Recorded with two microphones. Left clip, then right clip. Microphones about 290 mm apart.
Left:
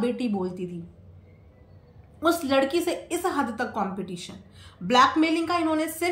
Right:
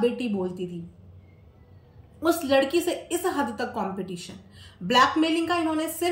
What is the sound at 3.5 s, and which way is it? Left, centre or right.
Speech, left.